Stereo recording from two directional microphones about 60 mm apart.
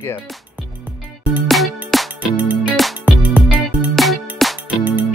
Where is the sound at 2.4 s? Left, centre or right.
Right.